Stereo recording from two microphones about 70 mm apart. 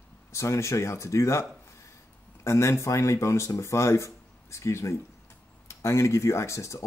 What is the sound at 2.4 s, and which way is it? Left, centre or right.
Speech, left.